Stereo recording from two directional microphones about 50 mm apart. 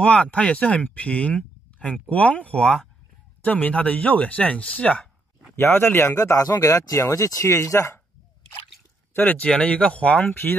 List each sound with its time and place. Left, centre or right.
0.0 s speech: left
2.6 s speech: centre
3.4 s speech: left
5.6 s speech: left
6.0 s speech: left
9.1 s speech: left